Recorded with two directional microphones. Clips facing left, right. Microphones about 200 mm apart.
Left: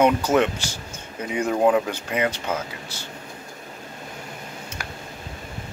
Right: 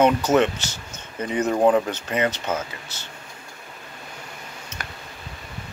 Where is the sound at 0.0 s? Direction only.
10° left (ahead or behind).